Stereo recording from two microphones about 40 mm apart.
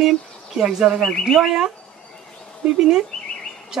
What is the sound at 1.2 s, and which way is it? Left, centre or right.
Speech, centre.